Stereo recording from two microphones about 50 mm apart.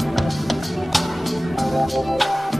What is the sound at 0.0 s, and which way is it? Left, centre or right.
Music, centre.